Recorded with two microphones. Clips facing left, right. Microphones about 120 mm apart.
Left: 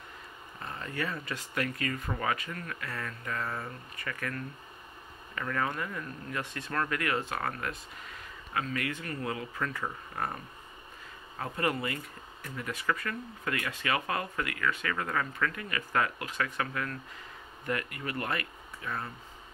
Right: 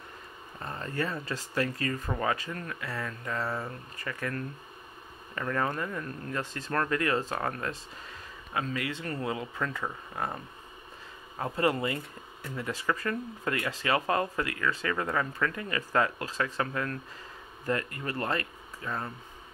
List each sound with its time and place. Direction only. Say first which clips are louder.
0.7 s speech: right 3 dB; 35° right (ahead or behind)
5.4 s speech: right 2 dB; 30° right (ahead or behind)